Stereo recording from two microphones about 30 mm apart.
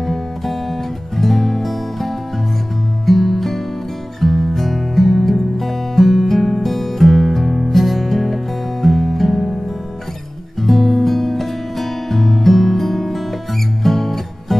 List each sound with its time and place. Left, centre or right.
0.0 s music: centre
10.6 s music: centre